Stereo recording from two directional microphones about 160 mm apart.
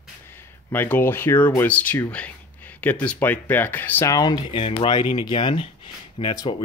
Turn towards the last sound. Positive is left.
turn(degrees=30)  # may be behind; listen again after turning